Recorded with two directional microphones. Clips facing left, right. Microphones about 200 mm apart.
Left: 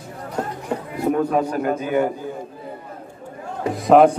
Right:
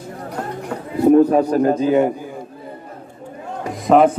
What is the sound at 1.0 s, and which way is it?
A man's voice, 35° right (ahead or behind).